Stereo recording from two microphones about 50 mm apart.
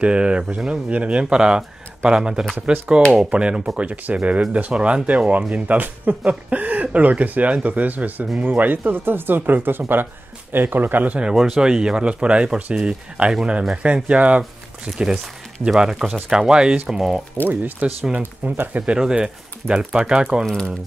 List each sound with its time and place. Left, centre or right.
0.0 s speech: right
11.3 s speech: centre; by 14.4 s right
14.9 s speech: centre
17.5 s speech: right
18.9 s speech: centre